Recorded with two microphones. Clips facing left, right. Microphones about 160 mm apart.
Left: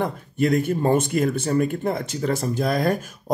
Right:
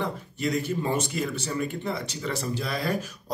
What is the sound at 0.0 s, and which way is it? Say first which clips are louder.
Speech: left 6 dB; 50° left (ahead or behind).